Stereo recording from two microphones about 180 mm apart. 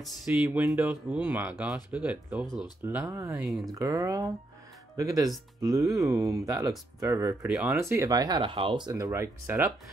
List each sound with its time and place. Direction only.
0.0 s speech: centre (ahead or behind); by 3.3 s 15° right (ahead or behind)
3.3 s speech: centre (ahead or behind)
3.7 s speech: 20° right (ahead or behind)